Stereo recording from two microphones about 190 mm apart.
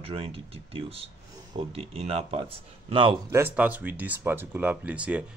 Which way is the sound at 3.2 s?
10° right (ahead or behind).